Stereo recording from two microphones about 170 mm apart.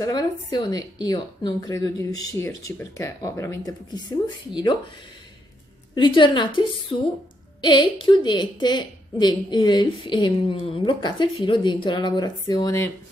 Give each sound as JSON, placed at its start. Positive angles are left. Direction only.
{"t": 0.0, "sound": "a woman's voice", "side_deg": 25}
{"t": 5.9, "sound": "a woman's voice", "side_deg": 30}